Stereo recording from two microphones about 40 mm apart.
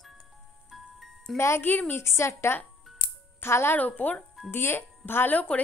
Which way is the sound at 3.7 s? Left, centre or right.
Left.